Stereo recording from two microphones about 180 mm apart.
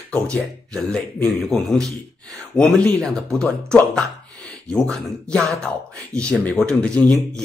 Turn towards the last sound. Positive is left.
turn(degrees=5)  # may be behind; listen again after turning